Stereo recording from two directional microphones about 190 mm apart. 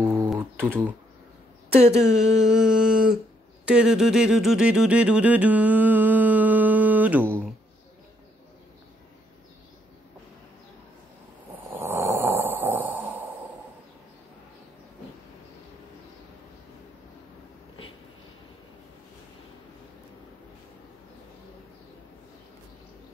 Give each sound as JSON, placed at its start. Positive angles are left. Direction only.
{"t": 0.0, "sound": "typing", "side_deg": -15}
{"t": 0.7, "sound": "speech", "side_deg": -10}
{"t": 1.7, "sound": "speech", "side_deg": -35}
{"t": 2.0, "sound": "a sound", "side_deg": -5}
{"t": 3.6, "sound": "speech", "side_deg": -5}
{"t": 11.7, "sound": "snoring", "side_deg": -15}